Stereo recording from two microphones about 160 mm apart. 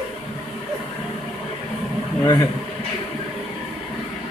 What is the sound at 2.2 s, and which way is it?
Speech, 20° left (ahead or behind).